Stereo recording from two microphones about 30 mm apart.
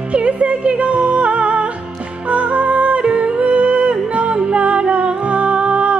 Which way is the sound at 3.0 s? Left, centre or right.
Right.